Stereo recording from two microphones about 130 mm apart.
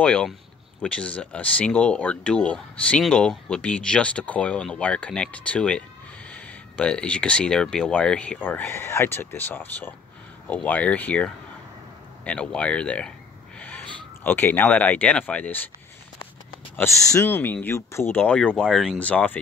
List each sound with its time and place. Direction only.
0.0 s speech: 10° left (ahead or behind)
16.7 s speech: 20° left (ahead or behind)